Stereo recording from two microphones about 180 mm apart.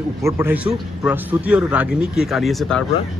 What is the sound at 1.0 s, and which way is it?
Speech, 5° right (ahead or behind).